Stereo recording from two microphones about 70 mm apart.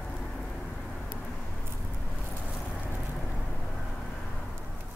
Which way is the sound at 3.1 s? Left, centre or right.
Centre.